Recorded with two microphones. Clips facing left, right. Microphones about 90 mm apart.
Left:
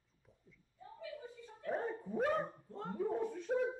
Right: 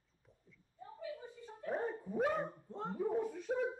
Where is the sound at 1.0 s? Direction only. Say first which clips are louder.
Right 2 dB; 30° right (ahead or behind).